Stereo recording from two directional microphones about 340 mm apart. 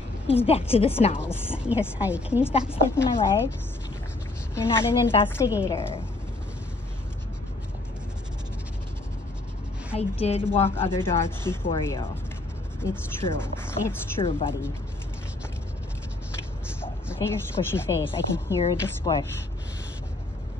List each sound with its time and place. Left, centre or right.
0.3 s speech: centre
3.0 s speech: centre
4.6 s speech: centre
9.9 s speech: centre
10.5 s speech: centre
16.8 s speech: centre